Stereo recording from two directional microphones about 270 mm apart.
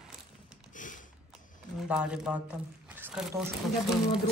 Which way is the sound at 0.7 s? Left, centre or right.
Left.